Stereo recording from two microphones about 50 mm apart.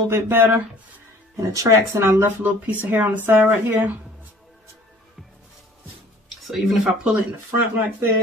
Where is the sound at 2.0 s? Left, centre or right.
Right.